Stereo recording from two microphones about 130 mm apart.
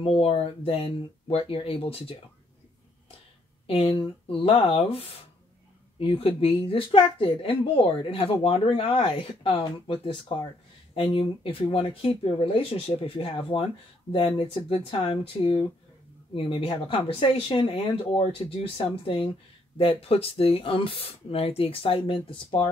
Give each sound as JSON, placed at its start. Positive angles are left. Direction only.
{"t": 0.0, "sound": "speech", "side_deg": 50}
{"t": 3.6, "sound": "speech", "side_deg": 50}